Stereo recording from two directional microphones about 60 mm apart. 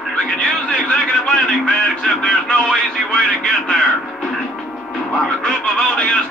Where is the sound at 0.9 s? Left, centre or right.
Centre.